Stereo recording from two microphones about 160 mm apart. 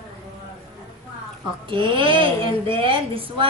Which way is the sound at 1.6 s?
30° right (ahead or behind).